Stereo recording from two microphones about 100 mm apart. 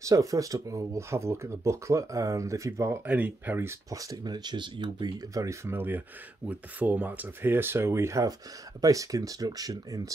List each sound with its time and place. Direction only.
0.0 s speech: 35° right (ahead or behind)
3.1 s speech: 15° right (ahead or behind)
3.9 s speech: 35° right (ahead or behind)
5.3 s speech: 30° right (ahead or behind)